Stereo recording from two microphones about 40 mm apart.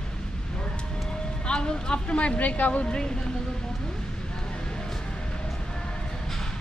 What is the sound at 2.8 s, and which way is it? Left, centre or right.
Speech, left.